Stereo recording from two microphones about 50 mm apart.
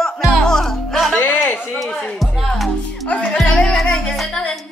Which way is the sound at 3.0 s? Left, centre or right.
Left.